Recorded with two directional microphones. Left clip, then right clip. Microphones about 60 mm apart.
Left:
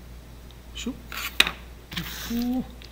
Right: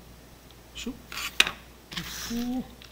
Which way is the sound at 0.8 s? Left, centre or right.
Centre.